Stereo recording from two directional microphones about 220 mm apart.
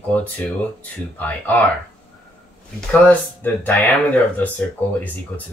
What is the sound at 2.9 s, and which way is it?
Speech, 5° left (ahead or behind).